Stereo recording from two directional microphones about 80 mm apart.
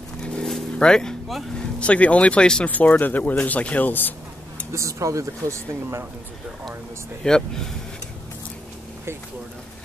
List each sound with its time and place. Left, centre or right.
0.2 s a sound: centre
0.7 s speech: centre
4.7 s speech: right
7.2 s speech: centre